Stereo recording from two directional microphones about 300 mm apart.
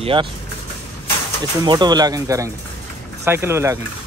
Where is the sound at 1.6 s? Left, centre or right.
Centre.